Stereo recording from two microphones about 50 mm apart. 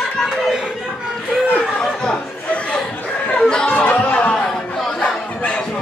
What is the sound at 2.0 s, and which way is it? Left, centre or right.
Chatter, left.